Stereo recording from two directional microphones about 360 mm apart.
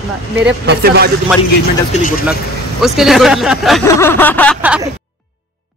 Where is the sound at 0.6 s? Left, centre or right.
Right.